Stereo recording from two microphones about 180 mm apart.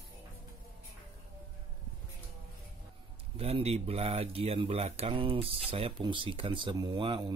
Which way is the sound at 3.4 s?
35° right (ahead or behind).